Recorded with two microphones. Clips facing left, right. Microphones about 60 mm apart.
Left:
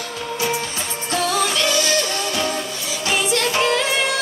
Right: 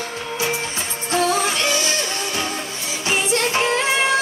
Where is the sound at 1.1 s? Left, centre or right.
Right.